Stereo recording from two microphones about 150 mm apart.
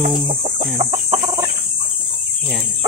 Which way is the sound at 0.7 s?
45° right (ahead or behind).